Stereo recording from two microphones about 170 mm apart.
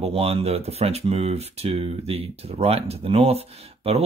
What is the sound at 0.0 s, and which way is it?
Speech, 35° right (ahead or behind).